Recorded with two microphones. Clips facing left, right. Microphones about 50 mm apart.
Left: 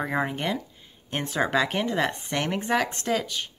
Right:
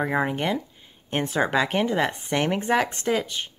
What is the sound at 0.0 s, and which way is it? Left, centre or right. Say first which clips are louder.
A woman's voice: right 3 dB; centre.